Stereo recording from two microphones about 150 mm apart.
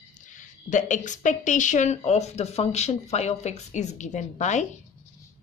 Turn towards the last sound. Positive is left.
turn(degrees=50)  # may be behind; listen again after turning